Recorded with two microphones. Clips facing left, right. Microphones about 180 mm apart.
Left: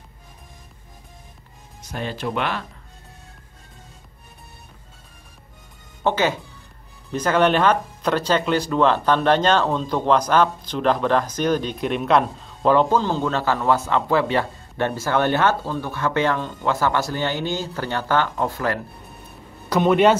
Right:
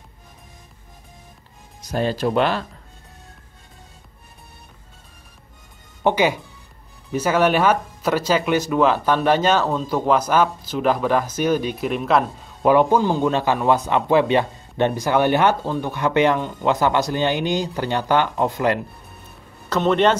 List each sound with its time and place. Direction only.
1.8 s speech: 35° right (ahead or behind)
6.0 s speech: 15° right (ahead or behind)
12.7 s speech: 15° right (ahead or behind)
19.7 s speech: 10° left (ahead or behind)